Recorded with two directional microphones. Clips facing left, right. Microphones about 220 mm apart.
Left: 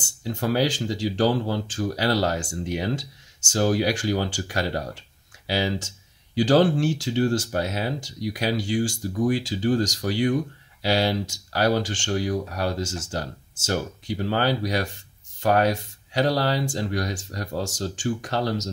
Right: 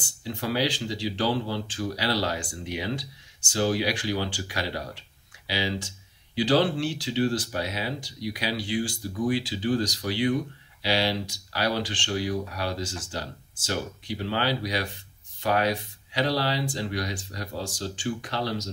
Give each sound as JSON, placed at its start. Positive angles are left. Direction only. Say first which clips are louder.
{"t": 0.0, "sound": "speech", "louder": "left 4 dB", "side_deg": 45}